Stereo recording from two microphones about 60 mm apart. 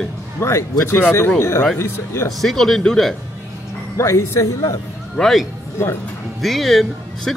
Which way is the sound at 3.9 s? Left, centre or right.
Left.